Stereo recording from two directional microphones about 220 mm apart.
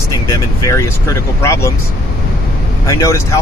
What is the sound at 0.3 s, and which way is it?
Speech, 15° left (ahead or behind).